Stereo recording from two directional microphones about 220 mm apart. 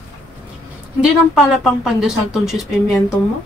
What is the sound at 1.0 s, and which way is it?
A woman's voice, centre (ahead or behind).